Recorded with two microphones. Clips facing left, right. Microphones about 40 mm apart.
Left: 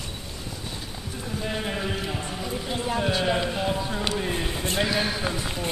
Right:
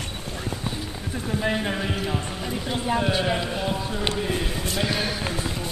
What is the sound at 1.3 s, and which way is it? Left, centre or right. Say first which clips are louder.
Clip-clop: right 6 dB; right.